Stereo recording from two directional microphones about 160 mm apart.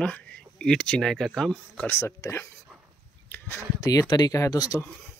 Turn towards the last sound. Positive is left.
turn(degrees=20)  # may be behind; listen again after turning